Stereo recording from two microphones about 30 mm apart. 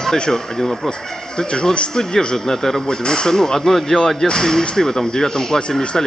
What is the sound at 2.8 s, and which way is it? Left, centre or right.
Speech, left.